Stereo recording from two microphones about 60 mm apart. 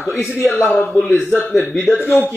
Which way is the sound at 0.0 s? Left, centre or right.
Centre.